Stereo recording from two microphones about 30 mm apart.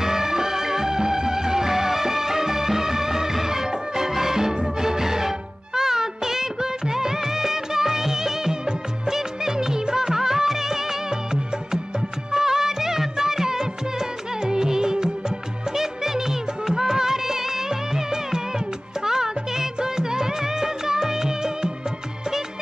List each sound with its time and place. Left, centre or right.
0.0 s music: centre
5.8 s music of bollywood: centre
12.3 s music of bollywood: centre
19.0 s music: centre